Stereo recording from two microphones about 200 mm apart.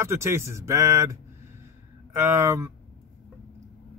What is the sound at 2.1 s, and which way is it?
Speech, 15° right (ahead or behind).